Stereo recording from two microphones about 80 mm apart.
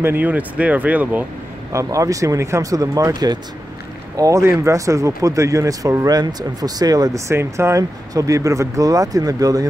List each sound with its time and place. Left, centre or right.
0.0 s speech: right
1.7 s speech: right
3.1 s speech: right
4.2 s speech: right